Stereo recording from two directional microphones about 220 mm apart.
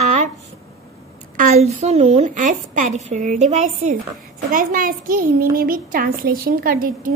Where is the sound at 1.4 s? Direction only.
30° right (ahead or behind).